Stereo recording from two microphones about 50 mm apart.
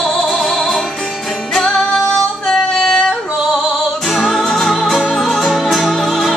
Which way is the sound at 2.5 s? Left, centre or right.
Centre.